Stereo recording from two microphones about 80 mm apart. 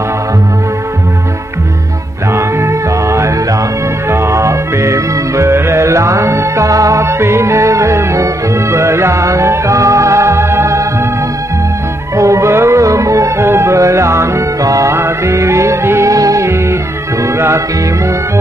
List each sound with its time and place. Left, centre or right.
2.3 s music: right
12.2 s music: right